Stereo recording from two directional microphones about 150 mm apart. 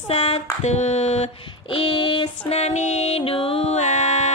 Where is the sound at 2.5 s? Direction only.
45° left (ahead or behind).